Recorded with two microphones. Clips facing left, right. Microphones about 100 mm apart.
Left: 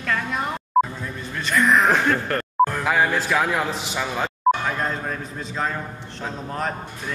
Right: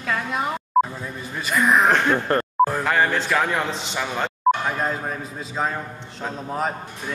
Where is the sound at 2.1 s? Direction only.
25° right (ahead or behind).